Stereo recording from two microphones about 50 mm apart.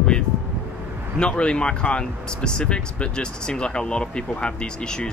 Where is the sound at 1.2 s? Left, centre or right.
Left.